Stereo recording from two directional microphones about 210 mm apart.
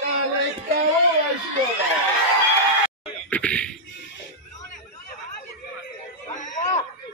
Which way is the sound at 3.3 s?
5° left (ahead or behind).